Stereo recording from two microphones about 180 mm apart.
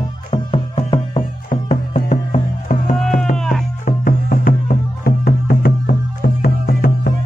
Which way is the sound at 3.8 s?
50° left (ahead or behind).